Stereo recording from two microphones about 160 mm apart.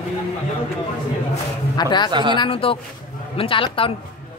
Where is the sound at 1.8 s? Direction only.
30° left (ahead or behind).